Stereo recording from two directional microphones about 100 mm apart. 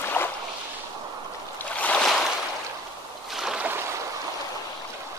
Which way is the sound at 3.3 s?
5° right (ahead or behind).